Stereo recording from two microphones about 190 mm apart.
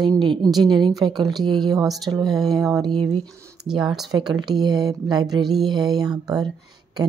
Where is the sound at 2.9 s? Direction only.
25° right (ahead or behind).